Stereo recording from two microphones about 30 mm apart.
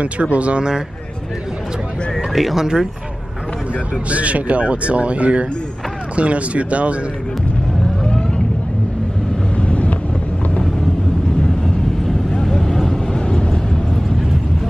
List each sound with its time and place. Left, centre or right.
0.0 s speech: right
0.6 s speech: right
2.1 s speech: centre
4.1 s speech: right
9.6 s vehicle: left
12.4 s vehicle: centre
13.1 s vehicle: left